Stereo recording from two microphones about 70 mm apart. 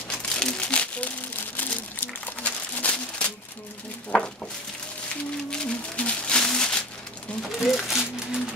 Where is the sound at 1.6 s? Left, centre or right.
Left.